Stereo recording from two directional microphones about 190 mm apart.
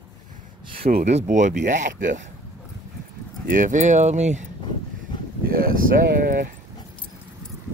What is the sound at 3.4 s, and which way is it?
Speech, 45° right (ahead or behind).